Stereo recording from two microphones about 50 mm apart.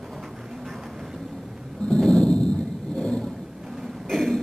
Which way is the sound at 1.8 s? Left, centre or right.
Centre.